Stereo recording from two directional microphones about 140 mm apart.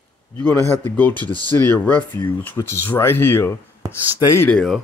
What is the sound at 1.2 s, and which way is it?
Speech, 30° right (ahead or behind).